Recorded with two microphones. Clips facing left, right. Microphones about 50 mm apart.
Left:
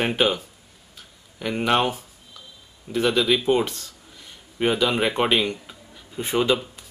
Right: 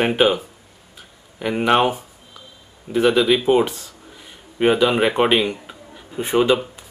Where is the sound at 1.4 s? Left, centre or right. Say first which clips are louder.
Right 4 dB; centre.